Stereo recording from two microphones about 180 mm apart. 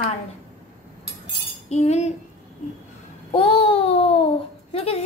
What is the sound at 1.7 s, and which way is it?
Speech, 35° left (ahead or behind).